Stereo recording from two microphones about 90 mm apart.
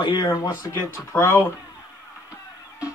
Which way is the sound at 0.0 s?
55° left (ahead or behind).